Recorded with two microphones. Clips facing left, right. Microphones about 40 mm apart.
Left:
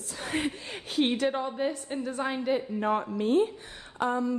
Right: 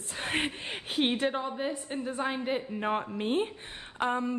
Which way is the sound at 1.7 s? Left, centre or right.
Right.